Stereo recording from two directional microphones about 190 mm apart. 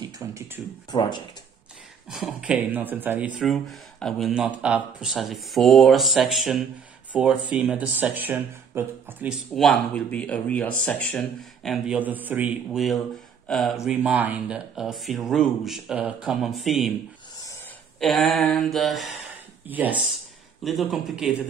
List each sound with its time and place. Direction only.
0.0 s a sound: 15° right (ahead or behind)
0.9 s speech: 20° left (ahead or behind)
2.0 s speech: 5° right (ahead or behind)
9.6 s speech: 5° left (ahead or behind)
17.9 s speech: centre (ahead or behind)